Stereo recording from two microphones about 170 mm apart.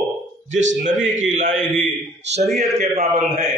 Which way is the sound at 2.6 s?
40° right (ahead or behind).